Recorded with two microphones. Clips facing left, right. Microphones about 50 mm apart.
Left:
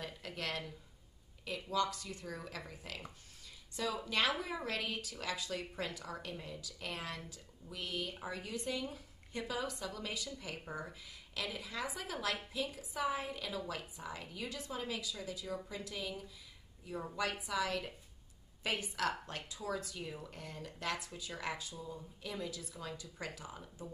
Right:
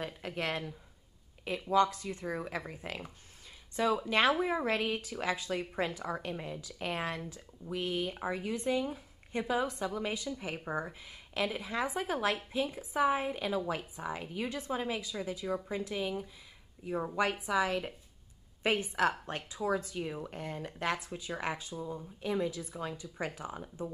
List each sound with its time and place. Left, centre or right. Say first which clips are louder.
0.0 s a woman's voice: right 6 dB; right